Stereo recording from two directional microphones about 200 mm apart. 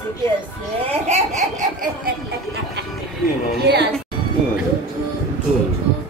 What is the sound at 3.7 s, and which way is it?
Speech, 55° right (ahead or behind).